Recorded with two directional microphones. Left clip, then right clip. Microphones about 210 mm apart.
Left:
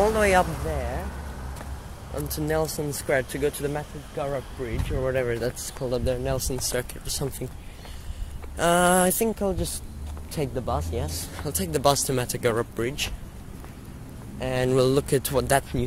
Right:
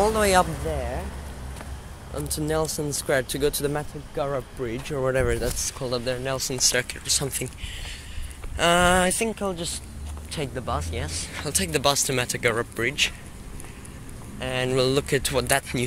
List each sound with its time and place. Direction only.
0.0 s speech: 15° right (ahead or behind)
2.1 s speech: 10° right (ahead or behind)
5.4 s speech: 5° left (ahead or behind)
5.9 s speech: 20° left (ahead or behind)
6.5 s speech: 10° left (ahead or behind)
8.5 s speech: 15° left (ahead or behind); by 10.6 s 30° left (ahead or behind)
10.6 s speech: 5° left (ahead or behind)
10.9 s speech: 30° left (ahead or behind)
11.4 s speech: 15° left (ahead or behind)
14.4 s speech: 30° left (ahead or behind)